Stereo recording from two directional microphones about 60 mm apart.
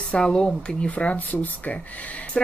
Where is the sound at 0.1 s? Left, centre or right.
Centre.